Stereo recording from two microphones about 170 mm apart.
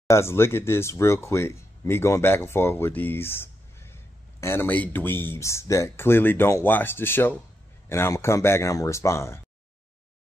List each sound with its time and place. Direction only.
0.1 s speech: 15° left (ahead or behind)